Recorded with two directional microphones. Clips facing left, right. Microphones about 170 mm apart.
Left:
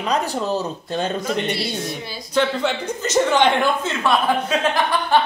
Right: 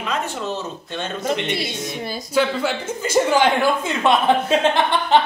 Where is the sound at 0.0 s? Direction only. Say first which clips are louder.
Left 3 dB; 35° left (ahead or behind).